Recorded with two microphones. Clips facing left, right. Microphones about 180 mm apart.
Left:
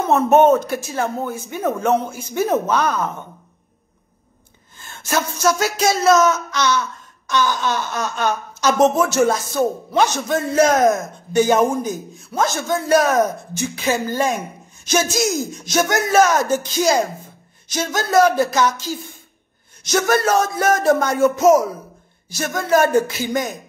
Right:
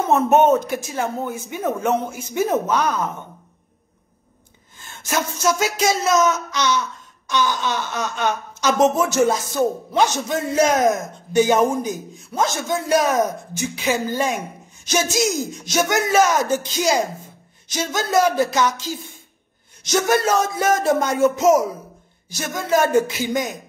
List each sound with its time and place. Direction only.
0.4 s a man's voice: 15° right (ahead or behind)
5.1 s a man's voice: 20° right (ahead or behind)
8.9 s a man's voice: 20° right (ahead or behind)